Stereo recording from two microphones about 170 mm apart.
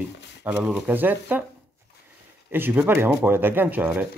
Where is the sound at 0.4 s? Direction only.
5° right (ahead or behind).